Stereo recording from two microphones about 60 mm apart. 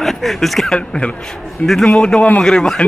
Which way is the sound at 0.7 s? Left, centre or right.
Centre.